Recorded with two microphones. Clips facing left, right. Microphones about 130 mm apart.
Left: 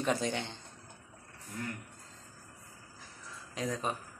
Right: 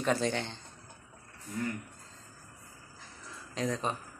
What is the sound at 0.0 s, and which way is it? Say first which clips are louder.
Speech: right 2 dB; 15° left (ahead or behind).